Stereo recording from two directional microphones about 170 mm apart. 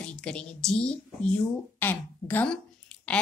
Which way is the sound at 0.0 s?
5° left (ahead or behind).